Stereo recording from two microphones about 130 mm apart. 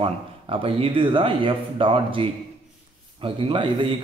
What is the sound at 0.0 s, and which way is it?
A man's voice, 45° right (ahead or behind).